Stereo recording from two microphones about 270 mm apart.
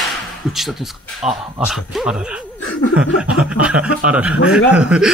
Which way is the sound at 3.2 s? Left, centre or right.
Centre.